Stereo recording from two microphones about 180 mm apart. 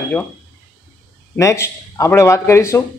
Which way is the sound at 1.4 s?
15° left (ahead or behind).